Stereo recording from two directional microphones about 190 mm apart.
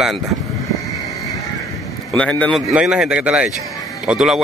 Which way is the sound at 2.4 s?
Centre (ahead or behind).